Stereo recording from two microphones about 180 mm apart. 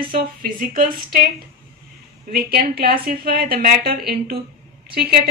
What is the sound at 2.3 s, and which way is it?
A woman's voice, 60° right (ahead or behind).